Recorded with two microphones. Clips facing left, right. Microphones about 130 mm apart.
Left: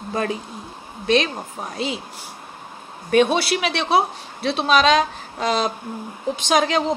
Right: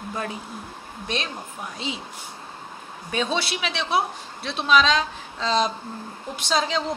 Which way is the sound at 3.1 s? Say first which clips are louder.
Left 9 dB; 65° left (ahead or behind).